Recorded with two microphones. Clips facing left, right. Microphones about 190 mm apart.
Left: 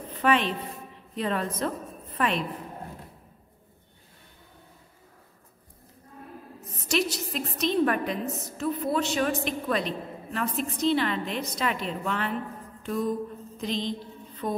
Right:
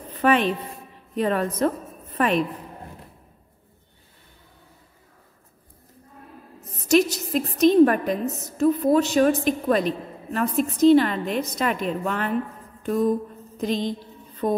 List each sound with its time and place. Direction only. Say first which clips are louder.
0.2 s music: right 4 dB; 45° right (ahead or behind)
1.1 s a woman's voice: right 6 dB; 45° right (ahead or behind)
6.9 s a woman's voice: right 8 dB; 45° right (ahead or behind)
13.6 s a woman's voice: right 5 dB; 50° right (ahead or behind)